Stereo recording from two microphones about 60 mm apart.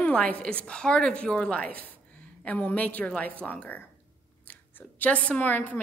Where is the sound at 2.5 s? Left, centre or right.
Left.